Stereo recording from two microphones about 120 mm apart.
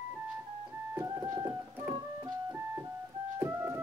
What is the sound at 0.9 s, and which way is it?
Keyboard, 30° right (ahead or behind).